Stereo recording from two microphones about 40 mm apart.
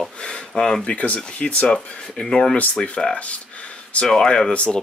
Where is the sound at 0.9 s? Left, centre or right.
Left.